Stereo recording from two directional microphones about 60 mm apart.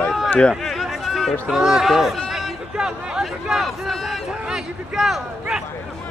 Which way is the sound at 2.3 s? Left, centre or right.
Centre.